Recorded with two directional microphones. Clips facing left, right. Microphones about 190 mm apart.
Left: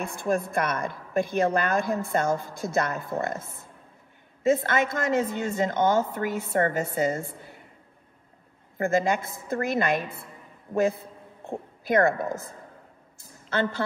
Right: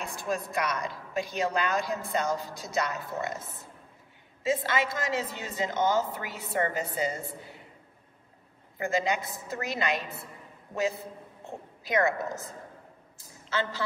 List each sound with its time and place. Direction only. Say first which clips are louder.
0.0 s a woman's voice: left 6 dB; 55° left (ahead or behind)
8.7 s a woman's voice: left 5 dB; 50° left (ahead or behind)